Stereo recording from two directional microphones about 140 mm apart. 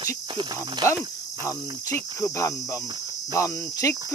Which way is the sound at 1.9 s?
20° left (ahead or behind).